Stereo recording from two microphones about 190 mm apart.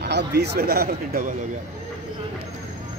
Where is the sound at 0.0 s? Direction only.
60° right (ahead or behind).